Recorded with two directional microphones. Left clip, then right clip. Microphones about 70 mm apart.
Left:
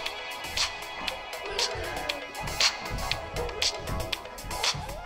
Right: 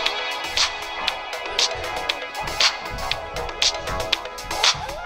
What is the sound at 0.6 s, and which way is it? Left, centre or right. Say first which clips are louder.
Music: right 7 dB; right.